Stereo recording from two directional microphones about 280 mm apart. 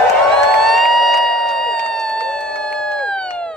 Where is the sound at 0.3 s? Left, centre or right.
Centre.